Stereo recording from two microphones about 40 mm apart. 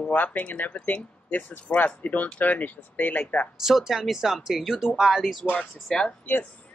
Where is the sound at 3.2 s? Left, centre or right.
Left.